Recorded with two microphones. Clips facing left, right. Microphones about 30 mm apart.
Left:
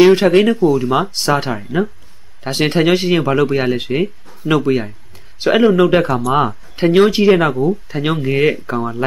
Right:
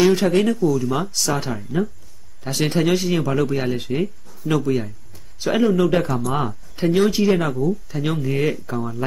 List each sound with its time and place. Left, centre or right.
0.0 s speech: left